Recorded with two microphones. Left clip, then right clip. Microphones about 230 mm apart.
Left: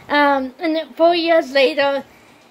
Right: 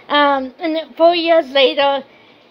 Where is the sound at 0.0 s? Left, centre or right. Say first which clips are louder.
Right 1 dB; centre.